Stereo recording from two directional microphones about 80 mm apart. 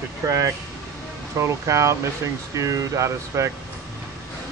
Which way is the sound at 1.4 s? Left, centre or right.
Right.